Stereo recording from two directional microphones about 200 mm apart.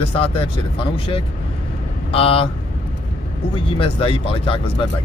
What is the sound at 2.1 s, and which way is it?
Speech, 30° left (ahead or behind).